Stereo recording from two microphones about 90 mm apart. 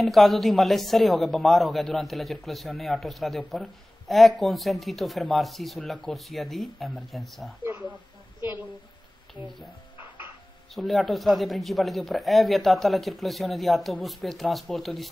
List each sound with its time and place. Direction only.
0.0 s a man's voice: centre (ahead or behind)
8.4 s a woman's voice: 25° right (ahead or behind)
10.7 s a man's voice: centre (ahead or behind)